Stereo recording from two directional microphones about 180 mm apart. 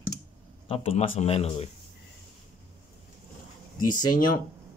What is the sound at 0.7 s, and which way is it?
Speech, 35° left (ahead or behind).